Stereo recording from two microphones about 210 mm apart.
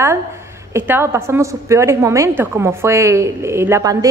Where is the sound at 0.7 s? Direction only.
10° right (ahead or behind).